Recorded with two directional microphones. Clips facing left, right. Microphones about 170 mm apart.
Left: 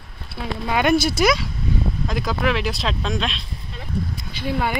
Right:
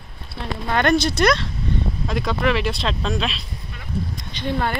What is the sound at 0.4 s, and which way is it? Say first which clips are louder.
Speech: even; 5° left (ahead or behind).